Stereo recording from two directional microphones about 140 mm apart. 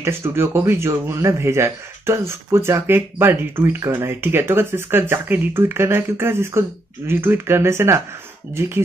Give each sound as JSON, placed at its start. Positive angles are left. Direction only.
{"t": 0.0, "sound": "speech", "side_deg": -20}